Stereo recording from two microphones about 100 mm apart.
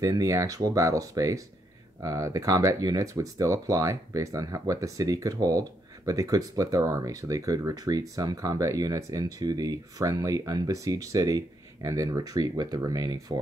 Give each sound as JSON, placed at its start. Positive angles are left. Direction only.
{"t": 0.0, "sound": "speech", "side_deg": -35}